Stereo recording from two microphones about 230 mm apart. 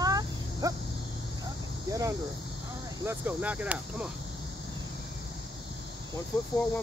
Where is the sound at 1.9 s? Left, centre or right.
Centre.